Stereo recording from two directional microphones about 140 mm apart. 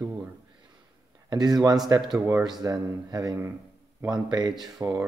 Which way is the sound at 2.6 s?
25° right (ahead or behind).